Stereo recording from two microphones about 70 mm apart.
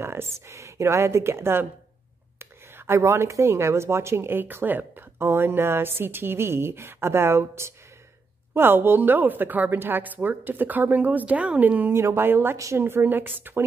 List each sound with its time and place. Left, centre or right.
0.0 s a woman's voice: right
11.9 s speech: right
12.5 s a woman's voice: right
12.8 s a woman's voice: right